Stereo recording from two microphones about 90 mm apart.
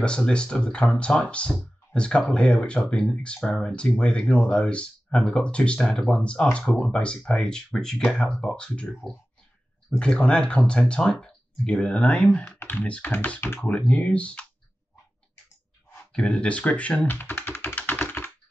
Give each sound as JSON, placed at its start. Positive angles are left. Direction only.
{"t": 0.0, "sound": "speech", "side_deg": 10}
{"t": 16.1, "sound": "speech", "side_deg": 10}